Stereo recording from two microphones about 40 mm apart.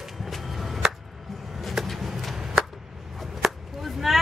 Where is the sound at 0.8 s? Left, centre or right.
Centre.